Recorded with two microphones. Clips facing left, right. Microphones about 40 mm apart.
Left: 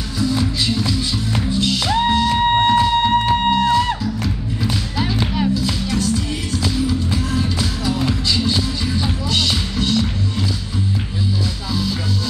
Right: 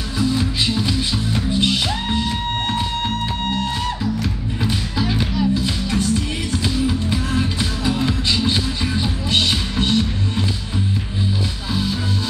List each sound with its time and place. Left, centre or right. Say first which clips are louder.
0.2 s music: even; right
2.5 s music: left 8 dB; left
4.9 s music: left 1 dB; centre
5.5 s music: even; right